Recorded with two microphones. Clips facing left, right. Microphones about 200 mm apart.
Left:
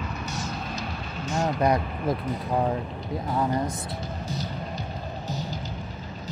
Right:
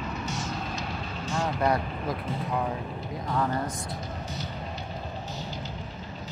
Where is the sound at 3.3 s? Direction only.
15° left (ahead or behind).